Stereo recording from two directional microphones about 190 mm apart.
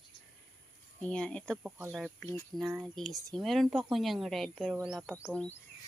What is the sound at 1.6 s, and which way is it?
A woman's voice, 10° right (ahead or behind).